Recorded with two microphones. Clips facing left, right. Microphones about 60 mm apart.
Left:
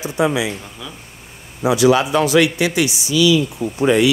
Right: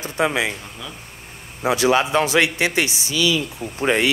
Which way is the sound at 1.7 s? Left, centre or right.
Right.